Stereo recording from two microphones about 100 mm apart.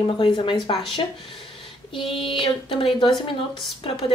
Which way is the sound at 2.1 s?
60° left (ahead or behind).